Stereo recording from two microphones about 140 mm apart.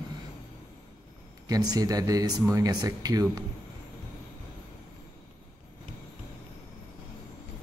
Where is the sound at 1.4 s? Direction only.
30° right (ahead or behind).